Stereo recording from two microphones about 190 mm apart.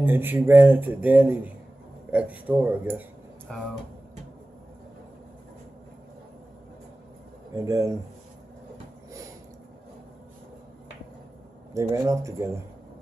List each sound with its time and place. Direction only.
0.0 s speech: 10° right (ahead or behind)
3.5 s speech: 5° left (ahead or behind)
7.5 s speech: 15° right (ahead or behind)
11.7 s speech: 15° right (ahead or behind)